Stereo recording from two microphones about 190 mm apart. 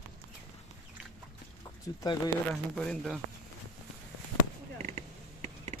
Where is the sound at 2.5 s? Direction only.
5° left (ahead or behind).